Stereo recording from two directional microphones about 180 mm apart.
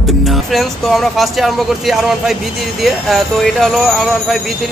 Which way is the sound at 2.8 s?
Centre (ahead or behind).